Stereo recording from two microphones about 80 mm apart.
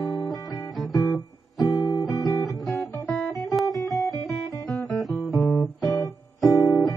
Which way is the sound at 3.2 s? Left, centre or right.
Centre.